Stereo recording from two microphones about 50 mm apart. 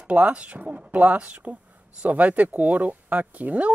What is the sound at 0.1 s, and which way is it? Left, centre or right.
Speech, right.